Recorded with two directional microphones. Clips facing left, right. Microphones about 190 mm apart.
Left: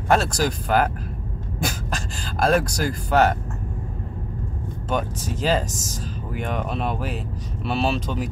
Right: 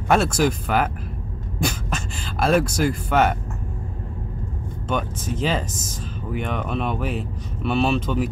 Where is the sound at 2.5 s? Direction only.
40° left (ahead or behind).